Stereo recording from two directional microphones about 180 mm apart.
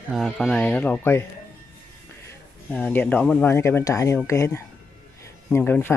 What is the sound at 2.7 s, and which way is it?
Speech, 10° left (ahead or behind).